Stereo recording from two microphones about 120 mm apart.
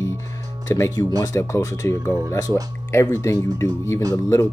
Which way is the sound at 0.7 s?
25° left (ahead or behind).